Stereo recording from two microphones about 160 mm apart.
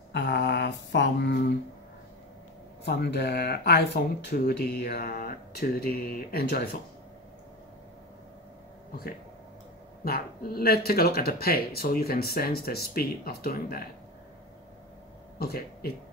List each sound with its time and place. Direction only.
0.1 s a sound: 90° left
2.8 s speech: 90° left
10.0 s speech: 70° left (ahead or behind)
15.3 s speech: 75° left (ahead or behind)